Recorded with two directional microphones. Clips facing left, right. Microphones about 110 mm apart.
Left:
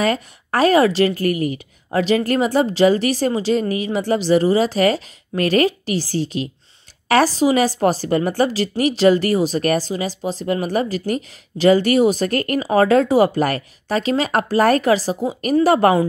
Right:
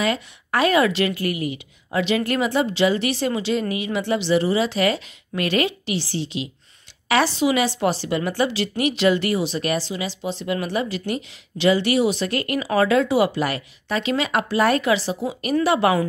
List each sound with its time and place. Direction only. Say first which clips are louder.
0.0 s a woman's voice: left 4 dB; 40° left (ahead or behind)